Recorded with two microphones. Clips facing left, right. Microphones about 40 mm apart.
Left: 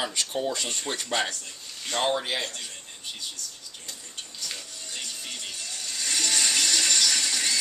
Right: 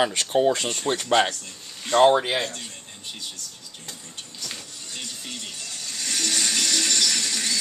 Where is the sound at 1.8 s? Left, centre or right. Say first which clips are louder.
Right 10 dB; right.